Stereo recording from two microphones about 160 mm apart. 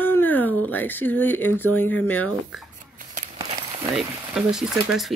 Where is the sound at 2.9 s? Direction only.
50° right (ahead or behind).